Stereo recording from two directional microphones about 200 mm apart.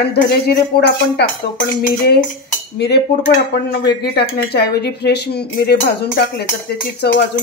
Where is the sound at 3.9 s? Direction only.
55° left (ahead or behind).